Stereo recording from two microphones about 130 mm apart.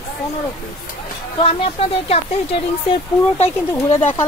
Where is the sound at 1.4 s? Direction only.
50° left (ahead or behind).